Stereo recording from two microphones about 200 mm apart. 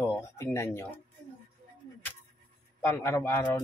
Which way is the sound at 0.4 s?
10° left (ahead or behind).